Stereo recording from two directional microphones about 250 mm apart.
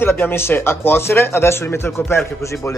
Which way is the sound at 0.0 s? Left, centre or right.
Centre.